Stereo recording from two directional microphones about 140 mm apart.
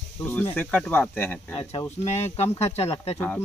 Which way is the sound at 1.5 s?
40° left (ahead or behind).